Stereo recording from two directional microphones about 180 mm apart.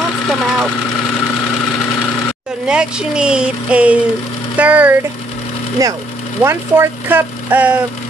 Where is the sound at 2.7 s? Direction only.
5° right (ahead or behind).